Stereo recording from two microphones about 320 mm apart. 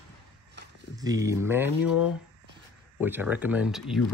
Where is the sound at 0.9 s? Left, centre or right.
Centre.